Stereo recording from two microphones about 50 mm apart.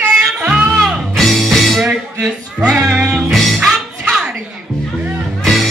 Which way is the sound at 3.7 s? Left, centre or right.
Centre.